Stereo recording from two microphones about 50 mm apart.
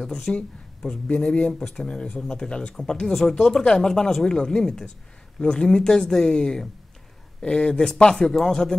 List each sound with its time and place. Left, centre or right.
0.0 s speech: centre
2.7 s speech: centre